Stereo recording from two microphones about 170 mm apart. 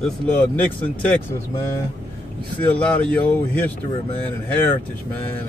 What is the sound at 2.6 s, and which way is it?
Speech, 10° left (ahead or behind).